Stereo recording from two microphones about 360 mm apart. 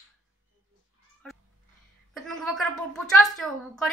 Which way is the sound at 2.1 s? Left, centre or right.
Centre.